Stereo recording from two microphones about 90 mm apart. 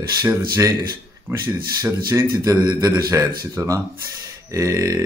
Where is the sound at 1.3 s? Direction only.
30° right (ahead or behind).